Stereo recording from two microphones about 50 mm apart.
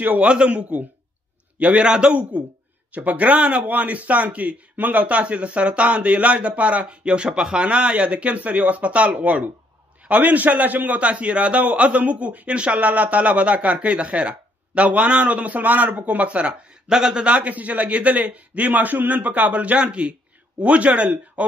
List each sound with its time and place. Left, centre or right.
0.0 s a man's voice: right